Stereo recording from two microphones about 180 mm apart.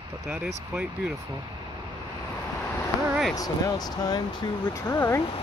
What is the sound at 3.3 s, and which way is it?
Speech, 20° left (ahead or behind).